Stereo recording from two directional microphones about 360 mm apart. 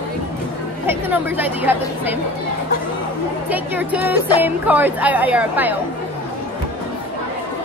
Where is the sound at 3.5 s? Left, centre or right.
Centre.